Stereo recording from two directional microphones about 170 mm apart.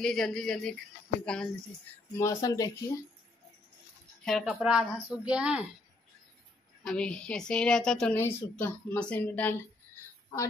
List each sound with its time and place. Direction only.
0.0 s a woman's voice: 5° left (ahead or behind)
2.1 s speech: 20° left (ahead or behind)
4.2 s a woman's voice: centre (ahead or behind)
6.8 s a woman's voice: 5° left (ahead or behind)